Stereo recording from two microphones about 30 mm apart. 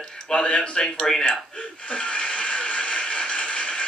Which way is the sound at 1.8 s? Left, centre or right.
Left.